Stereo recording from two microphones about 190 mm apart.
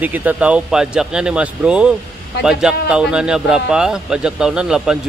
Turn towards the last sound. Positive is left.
turn(degrees=-5)  # may be behind; listen again after turning